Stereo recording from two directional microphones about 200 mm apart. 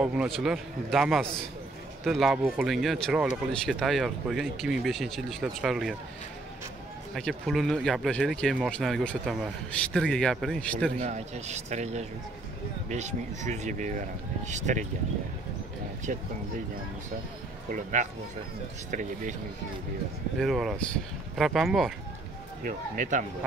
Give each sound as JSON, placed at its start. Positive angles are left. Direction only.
{"t": 0.0, "sound": "speech", "side_deg": -5}
{"t": 7.2, "sound": "speech", "side_deg": 0}
{"t": 11.0, "sound": "speech", "side_deg": -35}
{"t": 17.6, "sound": "speech", "side_deg": -40}
{"t": 20.3, "sound": "speech", "side_deg": 0}
{"t": 22.7, "sound": "speech", "side_deg": -40}